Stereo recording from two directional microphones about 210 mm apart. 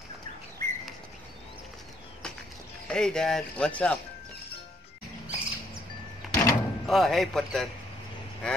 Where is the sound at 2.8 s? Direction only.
5° left (ahead or behind).